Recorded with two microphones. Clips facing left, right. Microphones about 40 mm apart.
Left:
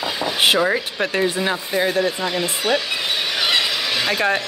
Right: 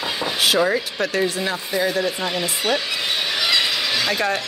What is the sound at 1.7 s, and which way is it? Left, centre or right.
Speech, left.